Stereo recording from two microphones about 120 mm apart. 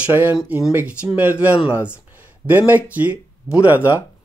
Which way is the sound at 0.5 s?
15° right (ahead or behind).